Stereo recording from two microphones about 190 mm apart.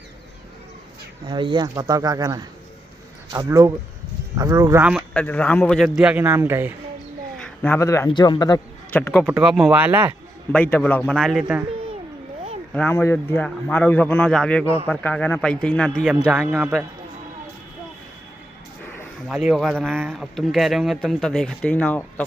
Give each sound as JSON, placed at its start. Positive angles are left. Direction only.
{"t": 1.2, "sound": "speech", "side_deg": -25}
{"t": 5.1, "sound": "speech", "side_deg": 5}
{"t": 7.4, "sound": "a man's voice", "side_deg": 10}
{"t": 8.9, "sound": "a man's voice", "side_deg": 10}
{"t": 9.2, "sound": "speech", "side_deg": -5}
{"t": 10.5, "sound": "a man's voice", "side_deg": 10}
{"t": 12.7, "sound": "a man's voice", "side_deg": 10}
{"t": 19.2, "sound": "speech", "side_deg": 0}